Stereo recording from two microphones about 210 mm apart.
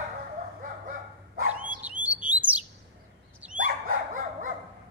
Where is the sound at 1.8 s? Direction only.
5° right (ahead or behind).